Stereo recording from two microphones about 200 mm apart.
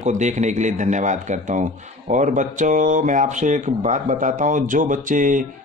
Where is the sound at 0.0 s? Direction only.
35° right (ahead or behind).